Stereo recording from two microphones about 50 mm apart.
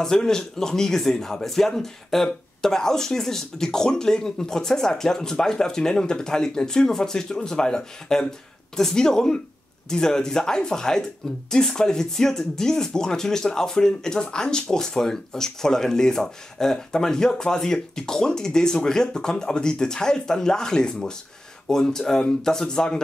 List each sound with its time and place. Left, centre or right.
0.0 s speech: centre